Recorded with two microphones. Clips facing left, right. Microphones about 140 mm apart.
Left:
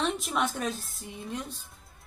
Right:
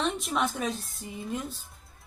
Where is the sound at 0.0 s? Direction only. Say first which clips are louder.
Even; centre (ahead or behind).